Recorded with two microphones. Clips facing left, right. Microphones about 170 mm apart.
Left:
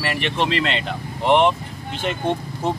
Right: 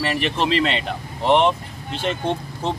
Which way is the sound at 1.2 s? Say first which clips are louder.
Even; centre (ahead or behind).